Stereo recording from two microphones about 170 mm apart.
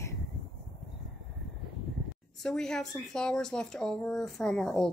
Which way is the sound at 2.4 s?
5° left (ahead or behind).